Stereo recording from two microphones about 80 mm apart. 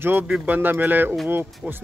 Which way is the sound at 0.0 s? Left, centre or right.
Right.